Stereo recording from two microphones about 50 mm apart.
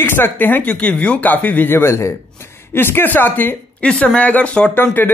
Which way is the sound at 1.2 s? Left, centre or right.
Left.